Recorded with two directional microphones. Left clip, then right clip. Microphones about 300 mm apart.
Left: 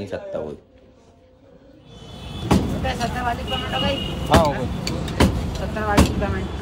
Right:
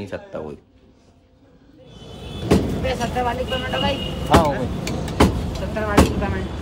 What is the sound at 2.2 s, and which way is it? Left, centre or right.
Speech, centre.